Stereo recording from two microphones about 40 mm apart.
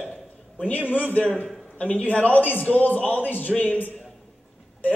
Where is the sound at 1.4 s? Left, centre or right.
Left.